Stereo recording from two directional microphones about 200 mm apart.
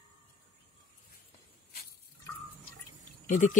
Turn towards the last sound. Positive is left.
turn(degrees=40)  # may be behind; listen again after turning